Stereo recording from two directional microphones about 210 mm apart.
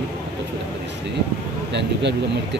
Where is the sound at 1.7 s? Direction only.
55° right (ahead or behind).